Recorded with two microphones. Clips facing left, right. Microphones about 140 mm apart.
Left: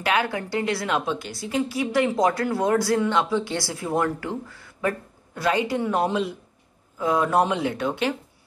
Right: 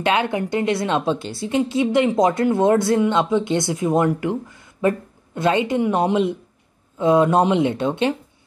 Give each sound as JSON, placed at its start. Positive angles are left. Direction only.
{"t": 0.0, "sound": "a woman's voice", "side_deg": -25}